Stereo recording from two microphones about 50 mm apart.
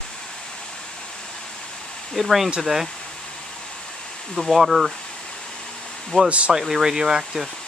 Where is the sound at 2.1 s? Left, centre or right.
Centre.